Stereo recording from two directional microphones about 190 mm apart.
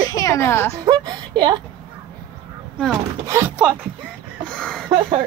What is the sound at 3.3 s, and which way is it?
Speech, 10° right (ahead or behind).